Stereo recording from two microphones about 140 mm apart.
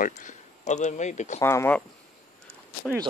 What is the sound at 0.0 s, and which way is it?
Speech, 65° left (ahead or behind).